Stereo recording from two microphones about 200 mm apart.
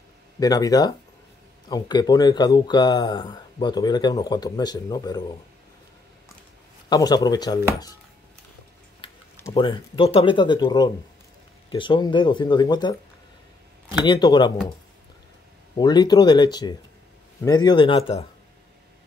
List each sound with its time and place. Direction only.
0.4 s speech: 20° left (ahead or behind)
6.9 s speech: 20° left (ahead or behind)
9.0 s speech: 25° left (ahead or behind)
14.0 s speech: 20° left (ahead or behind)
15.8 s speech: 20° left (ahead or behind)